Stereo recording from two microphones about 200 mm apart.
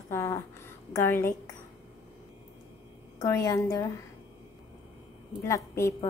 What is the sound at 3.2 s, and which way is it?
Speech, 15° left (ahead or behind).